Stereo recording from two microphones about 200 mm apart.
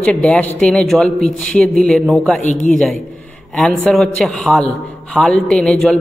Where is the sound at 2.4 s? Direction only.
35° left (ahead or behind).